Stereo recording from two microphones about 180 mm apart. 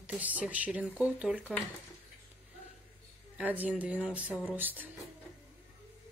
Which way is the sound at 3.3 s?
10° right (ahead or behind).